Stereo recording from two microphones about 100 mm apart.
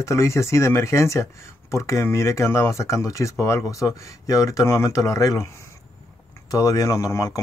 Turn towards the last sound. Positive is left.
turn(degrees=35)  # may be behind; listen again after turning